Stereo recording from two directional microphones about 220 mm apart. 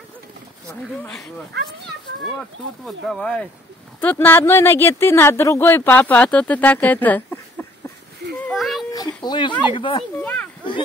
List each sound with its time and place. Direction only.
1.0 s speech: centre (ahead or behind)
2.8 s speech: centre (ahead or behind)
8.4 s a sound: centre (ahead or behind)
8.9 s speech: 20° left (ahead or behind)
10.2 s a child's voice: 10° left (ahead or behind)